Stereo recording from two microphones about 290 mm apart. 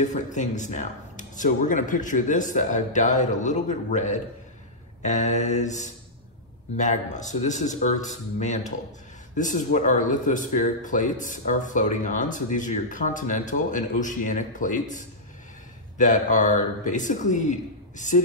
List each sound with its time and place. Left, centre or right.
0.0 s speech: left